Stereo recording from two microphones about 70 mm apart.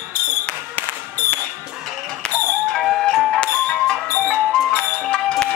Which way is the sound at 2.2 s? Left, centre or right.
Centre.